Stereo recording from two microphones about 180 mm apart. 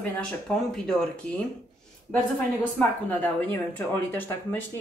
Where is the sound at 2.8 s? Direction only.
10° left (ahead or behind).